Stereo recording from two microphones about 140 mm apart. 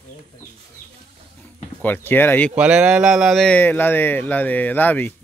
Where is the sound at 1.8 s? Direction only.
15° left (ahead or behind).